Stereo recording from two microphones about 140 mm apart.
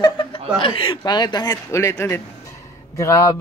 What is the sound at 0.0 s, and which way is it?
Chuckle, 35° left (ahead or behind).